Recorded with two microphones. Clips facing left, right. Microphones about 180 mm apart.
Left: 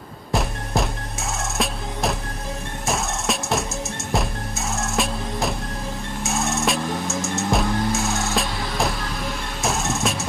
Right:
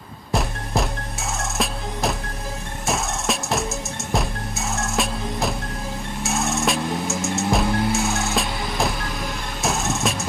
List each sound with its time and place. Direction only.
0.3 s music: centre (ahead or behind)